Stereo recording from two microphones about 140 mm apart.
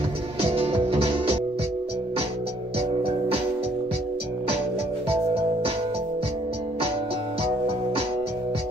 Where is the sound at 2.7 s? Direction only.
45° right (ahead or behind).